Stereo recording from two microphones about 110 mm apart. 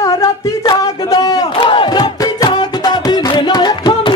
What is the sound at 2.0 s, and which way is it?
Music, 40° left (ahead or behind).